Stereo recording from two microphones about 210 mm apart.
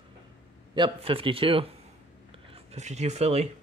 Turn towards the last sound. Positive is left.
turn(degrees=-30)  # may be behind; listen again after turning